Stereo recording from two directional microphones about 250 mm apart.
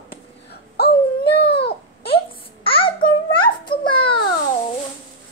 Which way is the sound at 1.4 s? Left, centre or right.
Left.